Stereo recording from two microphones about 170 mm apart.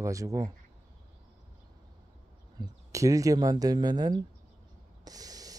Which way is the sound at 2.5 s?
20° right (ahead or behind).